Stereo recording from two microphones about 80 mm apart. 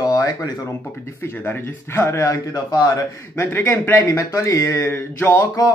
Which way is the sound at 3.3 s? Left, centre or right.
Left.